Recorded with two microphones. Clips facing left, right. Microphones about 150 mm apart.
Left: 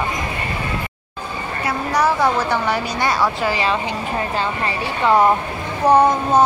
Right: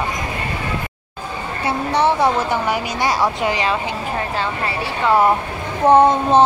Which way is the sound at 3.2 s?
15° right (ahead or behind).